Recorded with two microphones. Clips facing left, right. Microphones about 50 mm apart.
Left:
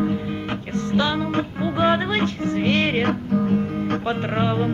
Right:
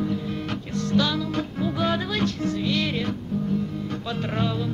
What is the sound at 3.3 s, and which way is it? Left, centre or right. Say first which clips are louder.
Guitar: left 5 dB; left.